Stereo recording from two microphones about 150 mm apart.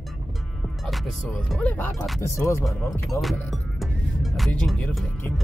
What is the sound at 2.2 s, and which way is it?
Speech, 20° left (ahead or behind).